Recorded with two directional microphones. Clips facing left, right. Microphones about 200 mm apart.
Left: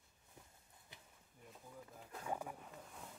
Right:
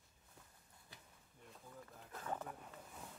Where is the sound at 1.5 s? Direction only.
5° left (ahead or behind).